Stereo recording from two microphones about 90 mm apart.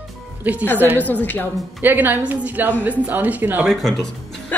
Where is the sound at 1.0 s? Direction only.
20° left (ahead or behind).